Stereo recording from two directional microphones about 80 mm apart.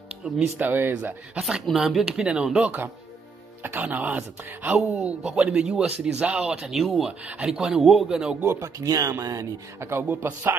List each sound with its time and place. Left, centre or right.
0.4 s speech: right
1.4 s speech: centre
3.9 s speech: centre
4.9 s speech: centre
8.4 s speech: right
9.8 s speech: right